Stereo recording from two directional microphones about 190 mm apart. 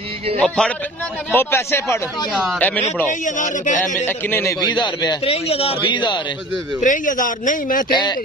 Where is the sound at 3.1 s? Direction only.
40° left (ahead or behind).